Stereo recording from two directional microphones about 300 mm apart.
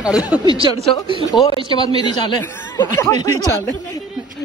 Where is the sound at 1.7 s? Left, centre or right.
Centre.